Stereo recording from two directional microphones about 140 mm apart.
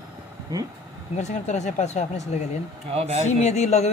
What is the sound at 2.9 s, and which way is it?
Speech, 50° right (ahead or behind).